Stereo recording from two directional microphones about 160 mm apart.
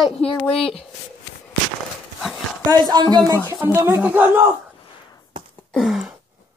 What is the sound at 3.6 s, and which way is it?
Speech, 15° right (ahead or behind).